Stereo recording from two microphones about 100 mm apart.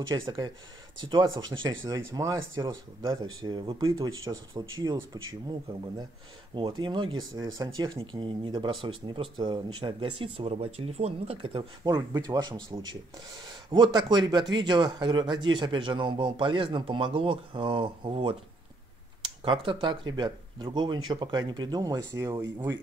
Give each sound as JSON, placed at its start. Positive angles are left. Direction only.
{"t": 0.2, "sound": "speech", "side_deg": -50}
{"t": 3.1, "sound": "speech", "side_deg": -50}
{"t": 7.5, "sound": "speech", "side_deg": -35}
{"t": 7.9, "sound": "speech", "side_deg": -55}
{"t": 11.8, "sound": "speech", "side_deg": -40}